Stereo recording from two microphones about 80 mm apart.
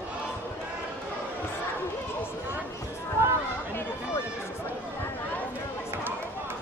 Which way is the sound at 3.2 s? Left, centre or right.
Right.